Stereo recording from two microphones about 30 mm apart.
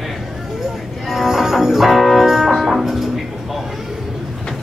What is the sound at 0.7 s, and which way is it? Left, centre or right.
Music, centre.